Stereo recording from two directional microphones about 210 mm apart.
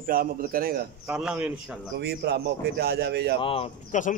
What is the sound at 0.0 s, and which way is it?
Speech, 45° right (ahead or behind).